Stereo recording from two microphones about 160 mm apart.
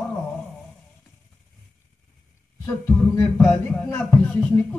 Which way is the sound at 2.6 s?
15° left (ahead or behind).